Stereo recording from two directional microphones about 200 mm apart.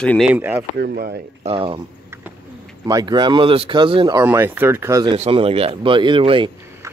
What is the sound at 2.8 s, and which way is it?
Speech, 20° right (ahead or behind).